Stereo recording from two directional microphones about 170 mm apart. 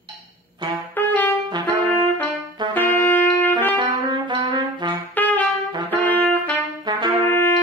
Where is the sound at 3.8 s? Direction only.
25° right (ahead or behind).